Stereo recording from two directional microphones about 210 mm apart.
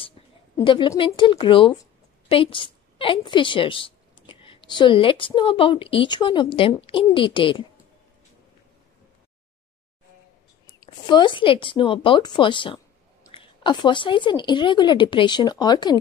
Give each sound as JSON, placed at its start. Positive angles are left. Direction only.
{"t": 0.6, "sound": "a woman's voice", "side_deg": 20}
{"t": 11.1, "sound": "speech", "side_deg": 20}